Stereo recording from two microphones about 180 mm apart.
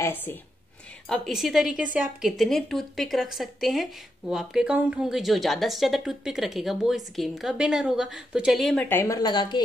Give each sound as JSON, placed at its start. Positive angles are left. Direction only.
{"t": 0.0, "sound": "a woman's voice", "side_deg": 10}
{"t": 8.8, "sound": "speech", "side_deg": 15}